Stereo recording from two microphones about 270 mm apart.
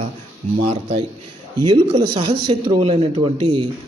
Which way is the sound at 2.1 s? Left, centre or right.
Centre.